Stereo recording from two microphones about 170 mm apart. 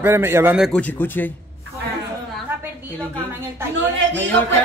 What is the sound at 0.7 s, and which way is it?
Speech, 10° left (ahead or behind).